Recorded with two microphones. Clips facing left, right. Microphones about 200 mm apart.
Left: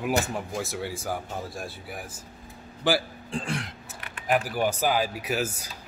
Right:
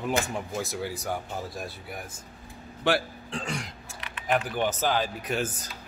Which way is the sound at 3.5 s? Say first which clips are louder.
Left 2 dB; centre (ahead or behind).